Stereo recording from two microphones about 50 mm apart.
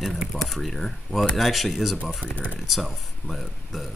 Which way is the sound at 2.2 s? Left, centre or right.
Left.